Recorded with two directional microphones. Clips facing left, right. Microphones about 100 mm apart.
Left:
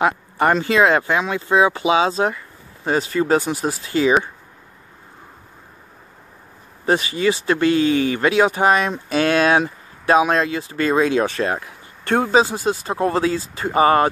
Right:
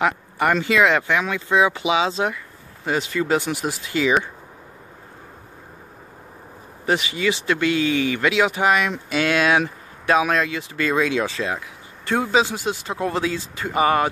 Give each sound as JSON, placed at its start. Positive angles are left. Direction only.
{"t": 0.0, "sound": "speech", "side_deg": 30}
{"t": 6.9, "sound": "speech", "side_deg": 35}
{"t": 11.2, "sound": "speech", "side_deg": 50}